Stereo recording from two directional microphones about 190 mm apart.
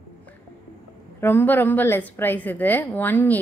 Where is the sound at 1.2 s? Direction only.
10° left (ahead or behind).